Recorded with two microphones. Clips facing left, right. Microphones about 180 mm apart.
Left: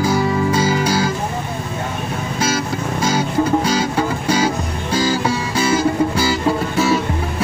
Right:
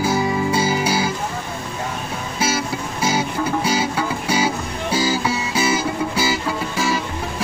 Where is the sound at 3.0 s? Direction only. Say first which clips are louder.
Left 3 dB; 5° right (ahead or behind).